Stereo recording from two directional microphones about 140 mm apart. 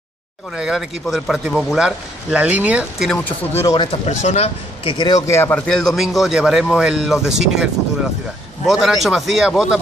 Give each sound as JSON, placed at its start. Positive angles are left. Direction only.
{"t": 0.6, "sound": "speech", "side_deg": -5}
{"t": 3.1, "sound": "speech", "side_deg": 10}
{"t": 3.7, "sound": "speech", "side_deg": 40}
{"t": 4.9, "sound": "speech", "side_deg": 30}
{"t": 5.7, "sound": "speech", "side_deg": 5}